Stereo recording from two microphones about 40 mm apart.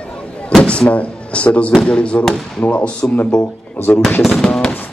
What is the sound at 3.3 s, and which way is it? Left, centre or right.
Speech, left.